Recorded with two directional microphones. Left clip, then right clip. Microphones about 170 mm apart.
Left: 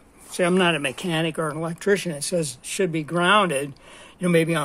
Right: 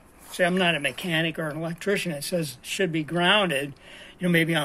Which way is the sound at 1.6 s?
35° left (ahead or behind).